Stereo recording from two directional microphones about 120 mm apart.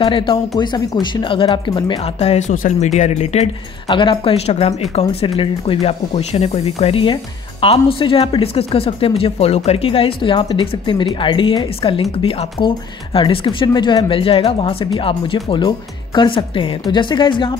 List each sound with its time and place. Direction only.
0.0 s speech: 45° left (ahead or behind); by 3.4 s 75° left (ahead or behind)
3.9 s speech: 45° left (ahead or behind); by 4.7 s 60° left (ahead or behind)
5.2 s speech: 50° left (ahead or behind)